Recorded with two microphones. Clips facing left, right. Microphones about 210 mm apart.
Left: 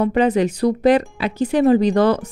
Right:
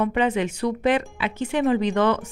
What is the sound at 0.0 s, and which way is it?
Speech, 40° left (ahead or behind).